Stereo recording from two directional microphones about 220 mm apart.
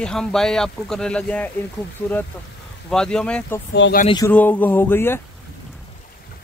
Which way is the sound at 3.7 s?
55° left (ahead or behind).